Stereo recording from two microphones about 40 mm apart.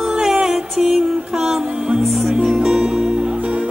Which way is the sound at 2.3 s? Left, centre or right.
Right.